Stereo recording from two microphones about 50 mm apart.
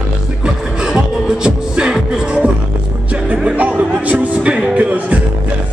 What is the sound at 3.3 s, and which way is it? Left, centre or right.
Music, right.